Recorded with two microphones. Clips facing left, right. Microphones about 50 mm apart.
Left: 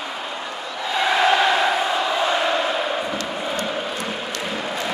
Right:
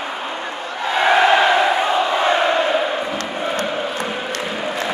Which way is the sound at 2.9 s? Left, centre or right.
Centre.